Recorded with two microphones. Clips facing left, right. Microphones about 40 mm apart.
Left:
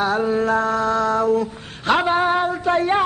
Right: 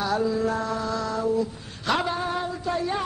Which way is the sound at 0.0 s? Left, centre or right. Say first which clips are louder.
Left 5 dB; left.